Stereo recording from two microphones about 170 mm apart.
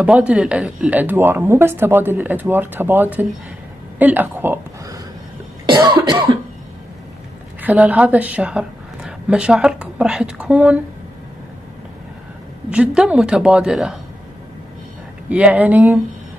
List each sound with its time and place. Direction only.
0.0 s speech: 5° right (ahead or behind)
5.7 s cough: 25° right (ahead or behind)
7.6 s a woman's voice: 10° right (ahead or behind)
12.6 s a woman's voice: 5° right (ahead or behind)
15.2 s speech: 10° right (ahead or behind)